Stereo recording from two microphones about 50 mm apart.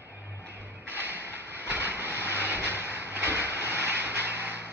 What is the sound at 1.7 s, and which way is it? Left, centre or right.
Vehicle, right.